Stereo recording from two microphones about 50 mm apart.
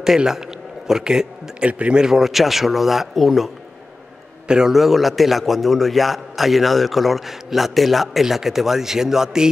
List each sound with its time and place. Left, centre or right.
0.0 s a man's voice: centre
1.7 s speech: right
2.0 s a man's voice: centre
4.5 s a man's voice: centre
4.7 s a man's voice: centre